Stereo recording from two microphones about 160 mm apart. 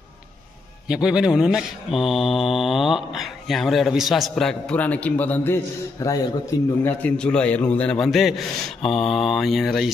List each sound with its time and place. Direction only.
0.8 s mantra: 5° right (ahead or behind)